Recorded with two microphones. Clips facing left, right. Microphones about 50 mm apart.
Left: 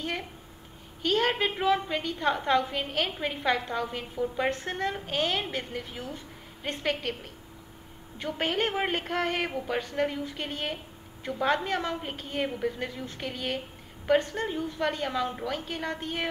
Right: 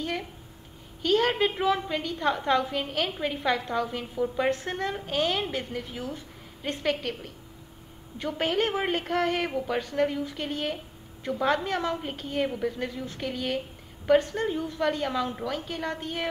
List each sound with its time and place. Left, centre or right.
0.0 s a sound: centre
1.0 s a woman's voice: centre
8.3 s a woman's voice: centre
14.2 s a woman's voice: left
14.5 s a woman's voice: centre